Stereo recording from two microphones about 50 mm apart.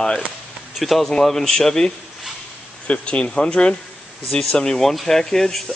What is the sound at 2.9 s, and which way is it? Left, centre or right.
Speech, centre.